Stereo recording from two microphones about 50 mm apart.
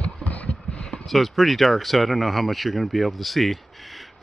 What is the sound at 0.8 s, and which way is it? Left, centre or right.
Speech, centre.